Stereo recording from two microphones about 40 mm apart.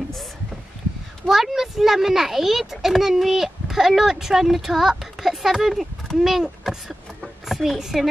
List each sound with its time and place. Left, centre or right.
1.2 s a child's voice: centre